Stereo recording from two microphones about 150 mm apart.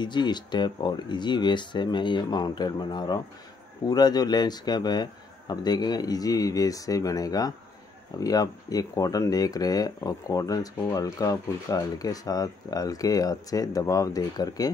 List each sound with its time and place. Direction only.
0.0 s speech: 30° left (ahead or behind)